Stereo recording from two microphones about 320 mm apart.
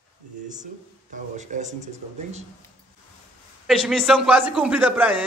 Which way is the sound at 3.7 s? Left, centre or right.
Centre.